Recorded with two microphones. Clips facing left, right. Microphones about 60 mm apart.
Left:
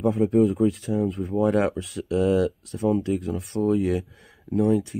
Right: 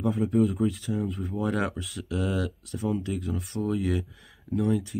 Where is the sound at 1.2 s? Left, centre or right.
Left.